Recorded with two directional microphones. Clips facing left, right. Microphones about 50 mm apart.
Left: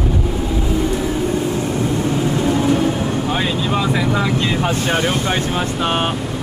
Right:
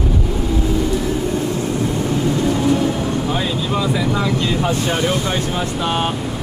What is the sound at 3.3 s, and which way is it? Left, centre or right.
Vehicle, left.